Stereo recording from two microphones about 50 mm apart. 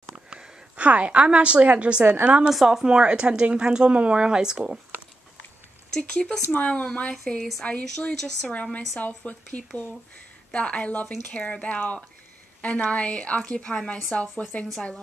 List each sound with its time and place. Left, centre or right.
0.7 s a woman's voice: right
2.0 s a woman's voice: right
2.5 s speech: centre
5.9 s speech: centre
6.5 s a woman's voice: left
8.0 s speech: centre
8.9 s a woman's voice: left